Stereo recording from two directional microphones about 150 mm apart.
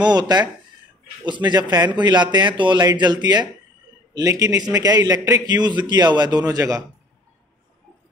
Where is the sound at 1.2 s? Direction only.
30° right (ahead or behind).